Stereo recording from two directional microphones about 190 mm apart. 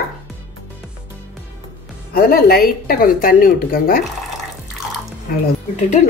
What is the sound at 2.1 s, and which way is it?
Speech, 50° left (ahead or behind).